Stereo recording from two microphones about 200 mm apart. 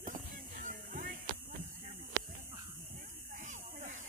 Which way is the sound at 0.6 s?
40° right (ahead or behind).